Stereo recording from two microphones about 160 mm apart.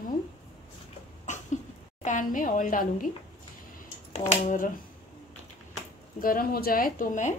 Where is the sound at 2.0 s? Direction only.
50° left (ahead or behind).